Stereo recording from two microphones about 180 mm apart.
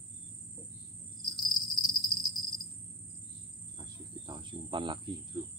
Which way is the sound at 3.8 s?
25° right (ahead or behind).